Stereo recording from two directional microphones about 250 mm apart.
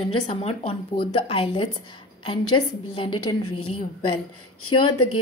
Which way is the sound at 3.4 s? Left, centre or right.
Left.